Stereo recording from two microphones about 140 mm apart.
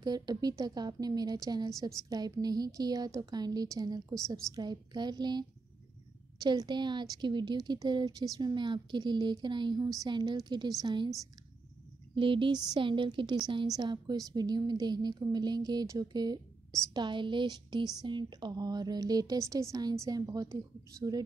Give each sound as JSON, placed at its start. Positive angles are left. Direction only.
{"t": 0.0, "sound": "a woman's voice", "side_deg": -30}
{"t": 12.2, "sound": "a woman's voice", "side_deg": -35}